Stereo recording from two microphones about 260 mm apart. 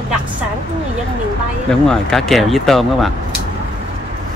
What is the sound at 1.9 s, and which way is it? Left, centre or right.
Speech, centre.